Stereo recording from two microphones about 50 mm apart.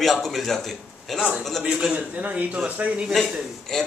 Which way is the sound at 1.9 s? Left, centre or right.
Right.